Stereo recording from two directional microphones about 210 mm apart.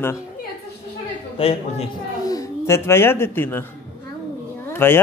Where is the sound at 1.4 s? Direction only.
25° left (ahead or behind).